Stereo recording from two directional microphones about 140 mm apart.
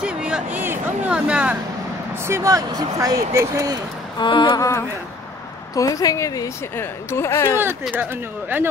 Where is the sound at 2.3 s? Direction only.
25° right (ahead or behind).